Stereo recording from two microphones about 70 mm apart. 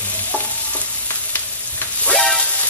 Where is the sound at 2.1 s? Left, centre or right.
Centre.